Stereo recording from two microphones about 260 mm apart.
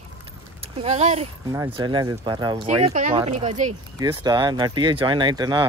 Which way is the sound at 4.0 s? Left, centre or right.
Centre.